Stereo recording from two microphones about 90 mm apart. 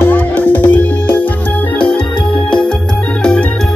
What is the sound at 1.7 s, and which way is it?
Organ, 10° left (ahead or behind).